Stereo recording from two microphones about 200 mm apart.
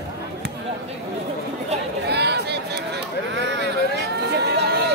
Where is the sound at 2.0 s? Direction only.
55° right (ahead or behind).